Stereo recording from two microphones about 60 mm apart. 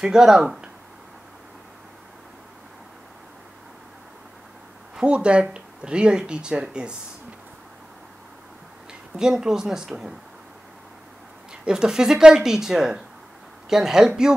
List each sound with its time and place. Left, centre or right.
0.0 s speech: centre
4.9 s speech: centre
9.1 s speech: centre
11.6 s speech: centre